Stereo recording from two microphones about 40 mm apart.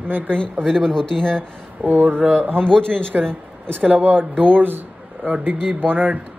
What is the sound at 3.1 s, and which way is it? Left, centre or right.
A man's voice, right.